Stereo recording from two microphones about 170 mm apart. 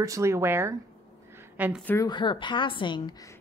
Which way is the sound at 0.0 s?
20° right (ahead or behind).